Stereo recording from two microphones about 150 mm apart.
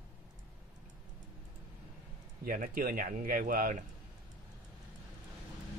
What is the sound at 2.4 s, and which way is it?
Speech, 70° right (ahead or behind).